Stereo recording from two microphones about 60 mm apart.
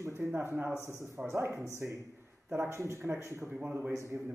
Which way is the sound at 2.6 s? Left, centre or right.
Right.